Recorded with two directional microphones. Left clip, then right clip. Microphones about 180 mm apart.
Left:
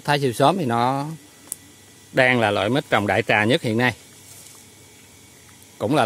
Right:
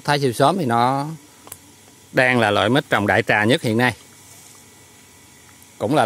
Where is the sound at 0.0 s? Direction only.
15° right (ahead or behind).